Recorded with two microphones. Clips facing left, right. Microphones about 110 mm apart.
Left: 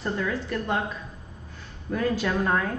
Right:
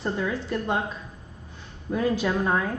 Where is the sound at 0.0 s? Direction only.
20° right (ahead or behind).